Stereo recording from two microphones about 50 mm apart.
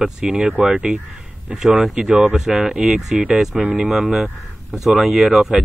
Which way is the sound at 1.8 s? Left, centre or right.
Centre.